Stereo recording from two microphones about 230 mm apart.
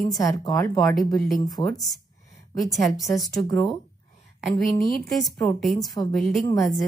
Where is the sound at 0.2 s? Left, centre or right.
Centre.